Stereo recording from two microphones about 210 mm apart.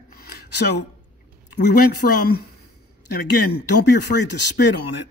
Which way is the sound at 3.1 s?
90° left.